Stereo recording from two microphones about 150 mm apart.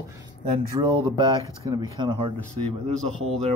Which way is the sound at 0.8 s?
30° right (ahead or behind).